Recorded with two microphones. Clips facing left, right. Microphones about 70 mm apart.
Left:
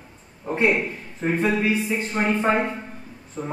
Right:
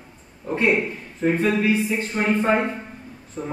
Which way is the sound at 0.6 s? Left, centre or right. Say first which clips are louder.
Even; centre.